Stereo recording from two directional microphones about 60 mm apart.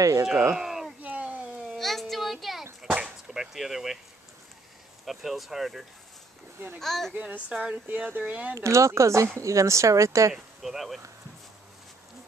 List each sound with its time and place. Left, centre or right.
0.0 s speech: right
0.6 s a sound: centre
1.0 s a sound: right
1.8 s a sound: centre
3.3 s speech: centre
5.0 s speech: centre
7.2 s speech: right
7.8 s speech: right
8.5 s speech: right
10.3 s speech: centre